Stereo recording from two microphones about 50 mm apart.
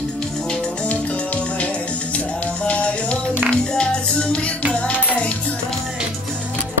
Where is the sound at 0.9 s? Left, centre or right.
Left.